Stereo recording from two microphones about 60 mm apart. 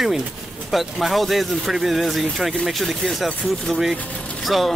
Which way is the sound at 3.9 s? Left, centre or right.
Left.